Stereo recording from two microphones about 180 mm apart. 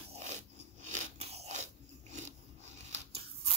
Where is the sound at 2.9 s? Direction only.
35° right (ahead or behind).